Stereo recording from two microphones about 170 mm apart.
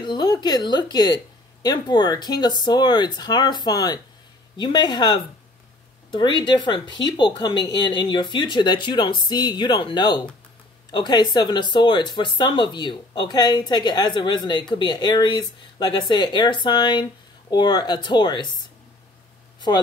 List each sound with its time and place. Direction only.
0.0 s speech: 25° left (ahead or behind)